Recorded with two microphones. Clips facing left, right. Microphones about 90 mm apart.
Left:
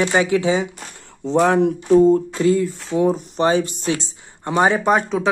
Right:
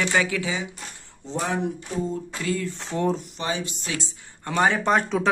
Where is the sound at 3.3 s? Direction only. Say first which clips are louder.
Left 11 dB; 40° left (ahead or behind).